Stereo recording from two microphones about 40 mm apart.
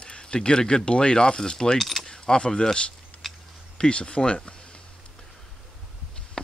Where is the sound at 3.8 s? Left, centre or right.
Left.